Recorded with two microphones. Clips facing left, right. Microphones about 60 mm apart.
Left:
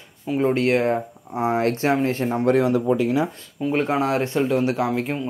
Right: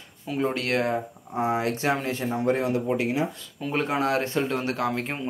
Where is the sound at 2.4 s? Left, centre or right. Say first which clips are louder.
Left 6 dB; left.